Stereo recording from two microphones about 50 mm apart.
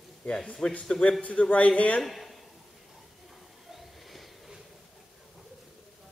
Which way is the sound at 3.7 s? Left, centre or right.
Centre.